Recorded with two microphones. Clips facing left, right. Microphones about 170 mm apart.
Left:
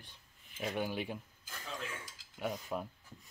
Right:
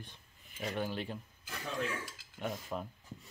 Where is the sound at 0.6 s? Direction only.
10° left (ahead or behind).